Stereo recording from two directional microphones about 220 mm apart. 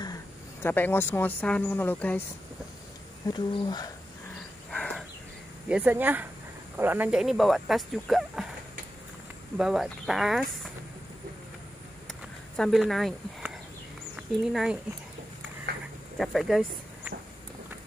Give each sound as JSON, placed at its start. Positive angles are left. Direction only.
{"t": 0.0, "sound": "speech", "side_deg": 15}
{"t": 3.3, "sound": "speech", "side_deg": 20}
{"t": 4.6, "sound": "a sound", "side_deg": 5}
{"t": 5.7, "sound": "speech", "side_deg": -5}
{"t": 9.6, "sound": "speech", "side_deg": 0}
{"t": 12.5, "sound": "speech", "side_deg": 0}
{"t": 15.7, "sound": "a sound", "side_deg": -45}
{"t": 16.2, "sound": "speech", "side_deg": 0}